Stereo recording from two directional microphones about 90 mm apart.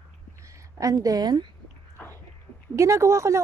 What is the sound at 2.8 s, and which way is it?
Speech, 35° right (ahead or behind).